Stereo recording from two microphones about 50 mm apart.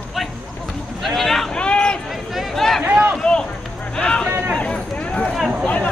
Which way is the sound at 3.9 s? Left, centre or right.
Centre.